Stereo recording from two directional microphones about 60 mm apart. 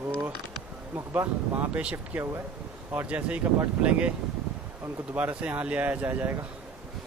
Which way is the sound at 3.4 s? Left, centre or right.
Right.